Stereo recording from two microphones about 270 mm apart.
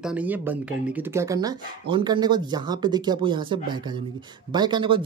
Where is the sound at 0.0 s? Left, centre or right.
Centre.